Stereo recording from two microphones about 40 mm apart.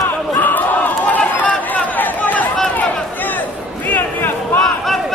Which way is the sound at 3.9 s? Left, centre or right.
Left.